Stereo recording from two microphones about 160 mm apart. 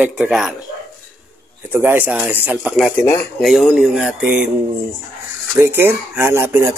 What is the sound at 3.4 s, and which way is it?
Speech, centre (ahead or behind).